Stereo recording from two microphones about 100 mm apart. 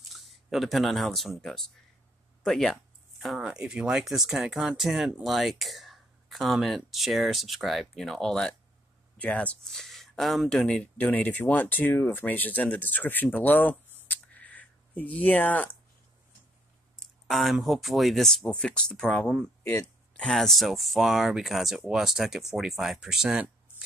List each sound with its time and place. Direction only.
0.1 s speech: centre (ahead or behind); by 15.7 s 15° left (ahead or behind)
16.9 s speech: centre (ahead or behind)
20.2 s speech: 5° left (ahead or behind)